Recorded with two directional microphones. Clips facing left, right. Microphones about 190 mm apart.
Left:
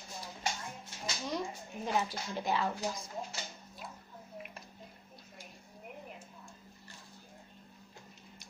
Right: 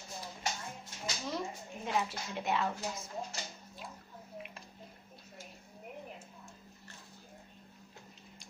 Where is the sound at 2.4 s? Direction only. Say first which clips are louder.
Left 1 dB; centre (ahead or behind).